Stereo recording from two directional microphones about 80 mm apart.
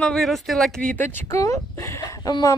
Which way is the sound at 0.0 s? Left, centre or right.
Centre.